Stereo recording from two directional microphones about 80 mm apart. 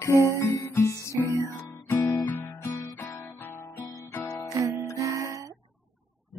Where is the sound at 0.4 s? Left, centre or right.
Left.